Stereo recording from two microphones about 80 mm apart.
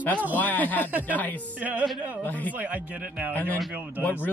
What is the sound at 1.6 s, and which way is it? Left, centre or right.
Speech, centre.